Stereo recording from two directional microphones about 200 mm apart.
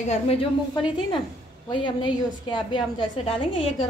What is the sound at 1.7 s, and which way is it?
A woman's voice, 25° left (ahead or behind).